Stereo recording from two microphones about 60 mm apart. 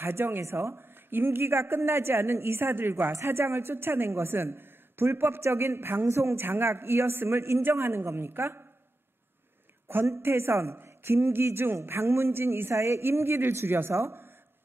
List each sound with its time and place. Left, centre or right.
0.0 s a woman's voice: right
9.9 s a woman's voice: right